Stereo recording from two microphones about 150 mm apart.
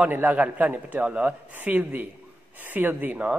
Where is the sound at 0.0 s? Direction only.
10° right (ahead or behind).